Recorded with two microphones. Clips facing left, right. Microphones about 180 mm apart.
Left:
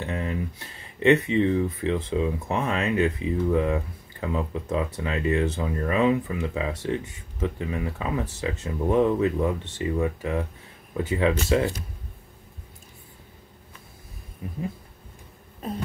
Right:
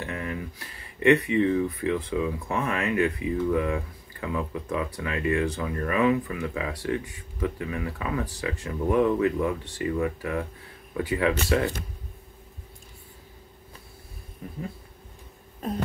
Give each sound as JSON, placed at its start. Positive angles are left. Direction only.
{"t": 0.0, "sound": "speech", "side_deg": 25}
{"t": 14.4, "sound": "speech", "side_deg": 20}